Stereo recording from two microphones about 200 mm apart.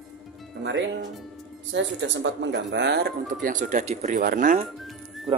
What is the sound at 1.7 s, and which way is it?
Speech, 65° right (ahead or behind).